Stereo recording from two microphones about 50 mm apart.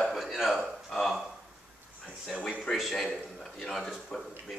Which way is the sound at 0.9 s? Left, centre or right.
Centre.